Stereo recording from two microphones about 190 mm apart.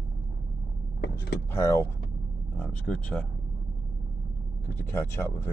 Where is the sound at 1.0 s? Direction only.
60° left (ahead or behind).